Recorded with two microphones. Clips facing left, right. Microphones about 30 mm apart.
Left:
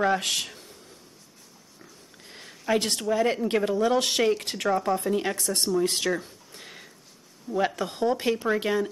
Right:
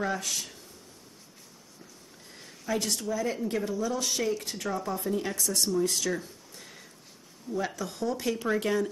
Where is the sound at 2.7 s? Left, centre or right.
Left.